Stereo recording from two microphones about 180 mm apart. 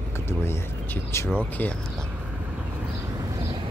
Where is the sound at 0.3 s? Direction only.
15° left (ahead or behind).